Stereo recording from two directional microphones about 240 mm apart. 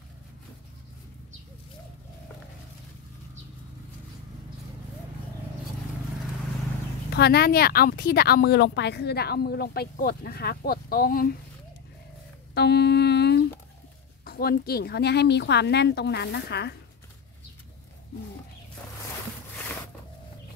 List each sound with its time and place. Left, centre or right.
7.1 s a woman's voice: left
12.5 s a sound: left
14.2 s speech: left